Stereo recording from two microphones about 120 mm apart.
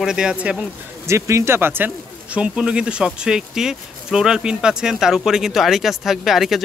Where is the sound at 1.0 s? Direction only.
25° right (ahead or behind).